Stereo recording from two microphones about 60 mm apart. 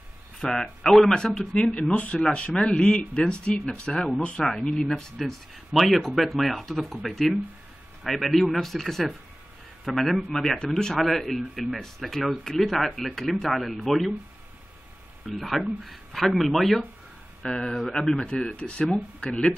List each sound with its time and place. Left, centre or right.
0.4 s speech: centre
4.5 s speech: centre
15.3 s speech: centre
18.2 s speech: centre